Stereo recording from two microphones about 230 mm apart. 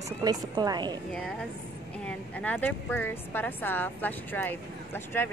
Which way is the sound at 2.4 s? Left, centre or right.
Centre.